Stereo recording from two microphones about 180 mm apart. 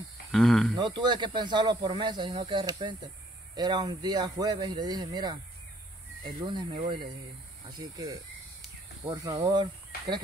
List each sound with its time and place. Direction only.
0.3 s speech: centre (ahead or behind)
0.7 s speech: 25° right (ahead or behind)
9.4 s speech: 25° right (ahead or behind)